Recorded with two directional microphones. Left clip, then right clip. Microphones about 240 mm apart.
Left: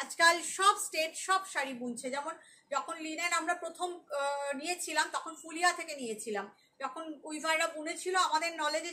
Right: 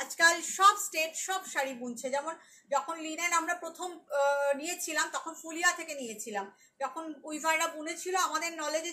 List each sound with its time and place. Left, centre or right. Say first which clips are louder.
0.0 s a woman's voice: right 1 dB; centre